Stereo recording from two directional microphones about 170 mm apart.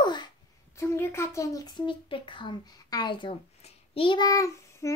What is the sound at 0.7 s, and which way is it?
Speech, 15° left (ahead or behind).